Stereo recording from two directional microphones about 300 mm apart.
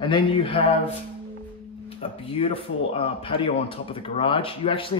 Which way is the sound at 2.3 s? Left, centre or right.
Centre.